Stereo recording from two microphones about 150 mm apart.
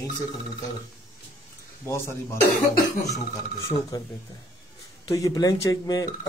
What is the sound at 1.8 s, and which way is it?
Speech, 20° left (ahead or behind).